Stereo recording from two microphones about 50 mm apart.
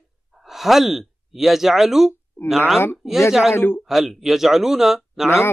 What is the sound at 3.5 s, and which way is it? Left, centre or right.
Speech, left.